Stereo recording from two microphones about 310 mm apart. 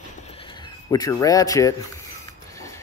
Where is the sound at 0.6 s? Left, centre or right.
Centre.